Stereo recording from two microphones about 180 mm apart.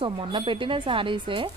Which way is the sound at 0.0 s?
30° right (ahead or behind).